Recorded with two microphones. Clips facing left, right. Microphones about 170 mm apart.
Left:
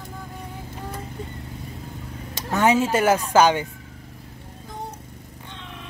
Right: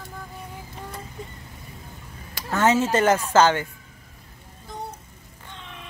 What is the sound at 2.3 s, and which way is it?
Speech, 20° left (ahead or behind).